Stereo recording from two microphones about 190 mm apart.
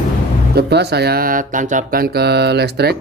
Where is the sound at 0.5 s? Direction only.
60° right (ahead or behind).